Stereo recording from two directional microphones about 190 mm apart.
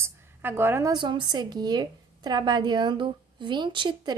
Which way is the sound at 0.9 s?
25° right (ahead or behind).